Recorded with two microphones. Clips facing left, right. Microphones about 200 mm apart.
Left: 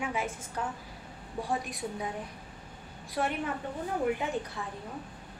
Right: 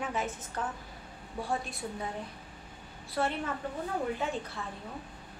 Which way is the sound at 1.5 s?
15° left (ahead or behind).